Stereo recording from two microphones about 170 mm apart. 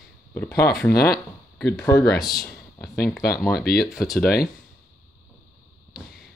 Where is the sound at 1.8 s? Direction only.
20° left (ahead or behind).